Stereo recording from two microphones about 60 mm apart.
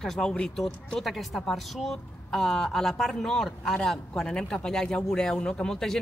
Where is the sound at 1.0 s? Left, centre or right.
Centre.